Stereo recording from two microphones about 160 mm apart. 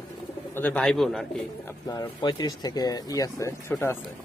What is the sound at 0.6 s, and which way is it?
Speech, 10° left (ahead or behind).